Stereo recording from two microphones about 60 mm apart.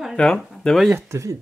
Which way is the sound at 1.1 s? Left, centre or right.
Right.